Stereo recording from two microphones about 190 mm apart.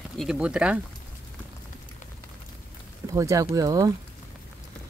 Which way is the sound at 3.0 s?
15° right (ahead or behind).